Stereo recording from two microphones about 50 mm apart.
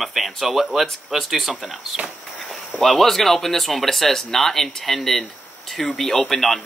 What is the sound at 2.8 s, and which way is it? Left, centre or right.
Speech, centre.